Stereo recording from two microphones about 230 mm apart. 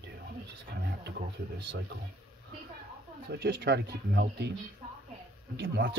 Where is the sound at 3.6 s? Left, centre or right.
Right.